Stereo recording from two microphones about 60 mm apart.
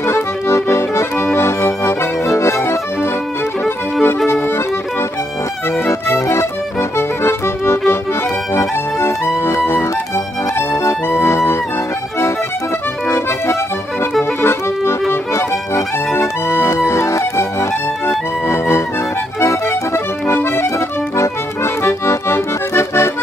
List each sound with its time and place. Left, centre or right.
0.0 s accordion: left
1.1 s accordion: left
3.6 s music: left
6.1 s music: left
14.4 s music: left
19.9 s accordion: left